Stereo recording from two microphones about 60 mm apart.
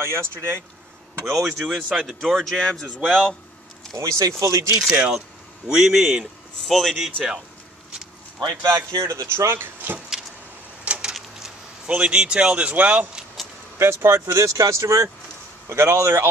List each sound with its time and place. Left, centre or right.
0.0 s speech: right
1.3 s speech: centre
3.9 s speech: right
4.7 s a man's voice: centre
8.5 s speech: right
9.0 s speech: right
9.3 s speech: right
9.9 s vehicle: centre
10.9 s a sound: centre
11.1 s speech: centre; by 13.1 s right
13.7 s speech: right
15.7 s speech: right